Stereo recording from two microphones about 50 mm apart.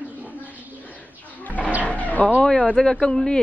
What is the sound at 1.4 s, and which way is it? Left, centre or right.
Roaring cats, left.